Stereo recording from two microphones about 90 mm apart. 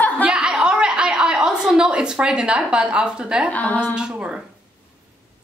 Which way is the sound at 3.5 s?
15° left (ahead or behind).